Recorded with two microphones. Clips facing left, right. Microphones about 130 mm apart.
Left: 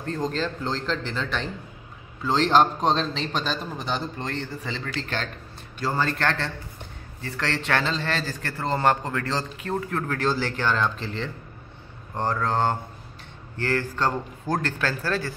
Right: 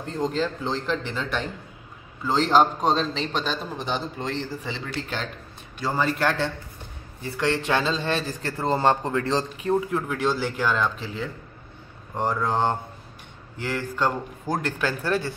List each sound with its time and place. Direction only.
0.0 s a man's voice: 15° right (ahead or behind)
7.2 s a man's voice: 15° right (ahead or behind)
9.9 s speech: 10° right (ahead or behind)